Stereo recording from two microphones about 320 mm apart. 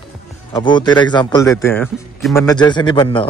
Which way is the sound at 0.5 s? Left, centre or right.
Centre.